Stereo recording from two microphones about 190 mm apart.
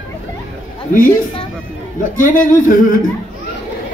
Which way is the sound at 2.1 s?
45° left (ahead or behind).